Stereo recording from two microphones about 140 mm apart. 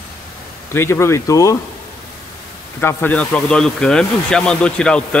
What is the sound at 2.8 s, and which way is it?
Speech, 15° left (ahead or behind).